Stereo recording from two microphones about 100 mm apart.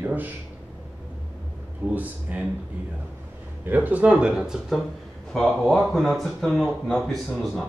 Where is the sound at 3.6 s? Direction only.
15° right (ahead or behind).